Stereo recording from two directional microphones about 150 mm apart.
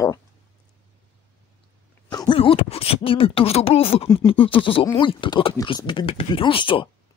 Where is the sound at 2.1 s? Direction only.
30° left (ahead or behind).